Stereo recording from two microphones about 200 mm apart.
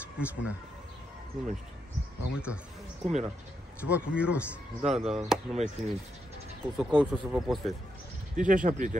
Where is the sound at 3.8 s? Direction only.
5° right (ahead or behind).